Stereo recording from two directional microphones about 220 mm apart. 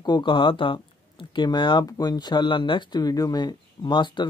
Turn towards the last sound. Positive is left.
turn(degrees=20)  # may be behind; listen again after turning